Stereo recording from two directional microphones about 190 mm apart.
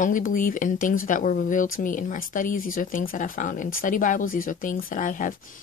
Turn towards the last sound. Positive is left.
turn(degrees=45)  # may be behind; listen again after turning